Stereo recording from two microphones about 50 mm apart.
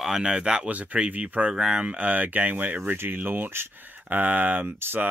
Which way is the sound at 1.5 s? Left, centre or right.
Centre.